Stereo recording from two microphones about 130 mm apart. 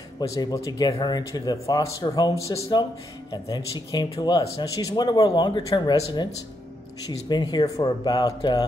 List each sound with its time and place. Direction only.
0.2 s speech: 25° left (ahead or behind)